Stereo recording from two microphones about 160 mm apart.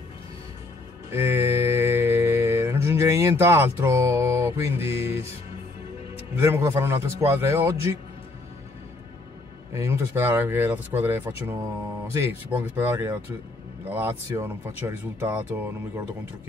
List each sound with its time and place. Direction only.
1.1 s mantra: 15° right (ahead or behind)
6.4 s speech: 20° right (ahead or behind)
9.7 s speech: 15° right (ahead or behind)